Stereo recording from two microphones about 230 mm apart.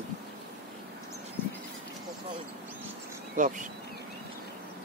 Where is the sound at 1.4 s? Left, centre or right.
Centre.